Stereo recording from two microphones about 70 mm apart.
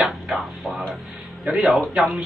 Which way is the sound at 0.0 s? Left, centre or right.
Centre.